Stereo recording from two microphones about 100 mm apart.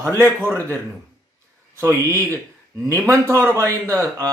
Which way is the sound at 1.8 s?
30° right (ahead or behind).